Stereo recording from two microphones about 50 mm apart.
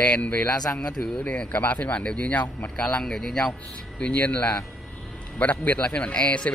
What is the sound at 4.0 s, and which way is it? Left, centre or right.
Speech, left.